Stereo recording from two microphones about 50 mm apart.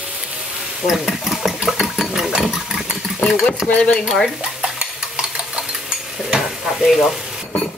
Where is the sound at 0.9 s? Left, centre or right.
Centre.